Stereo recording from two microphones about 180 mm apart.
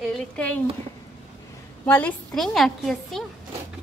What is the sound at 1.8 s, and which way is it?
A woman's voice, 10° left (ahead or behind).